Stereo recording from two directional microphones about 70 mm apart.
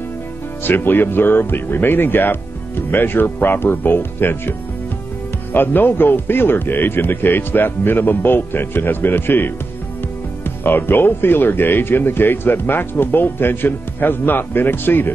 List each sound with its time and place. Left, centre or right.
0.7 s speech: left
10.6 s speech: left